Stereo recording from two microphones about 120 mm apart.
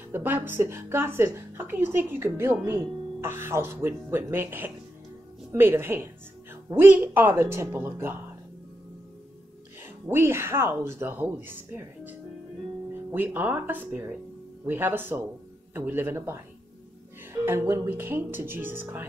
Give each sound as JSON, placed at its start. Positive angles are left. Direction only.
{"t": 0.1, "sound": "speech", "side_deg": -15}
{"t": 10.0, "sound": "speech", "side_deg": -20}